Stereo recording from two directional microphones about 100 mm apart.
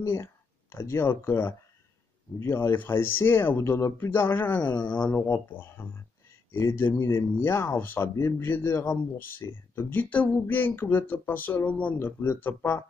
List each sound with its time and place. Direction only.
0.0 s speech: 25° left (ahead or behind)